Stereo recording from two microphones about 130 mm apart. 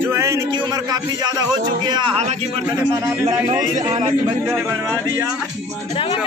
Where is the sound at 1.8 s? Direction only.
35° right (ahead or behind).